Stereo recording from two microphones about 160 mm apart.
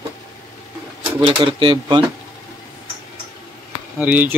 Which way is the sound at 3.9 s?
10° right (ahead or behind).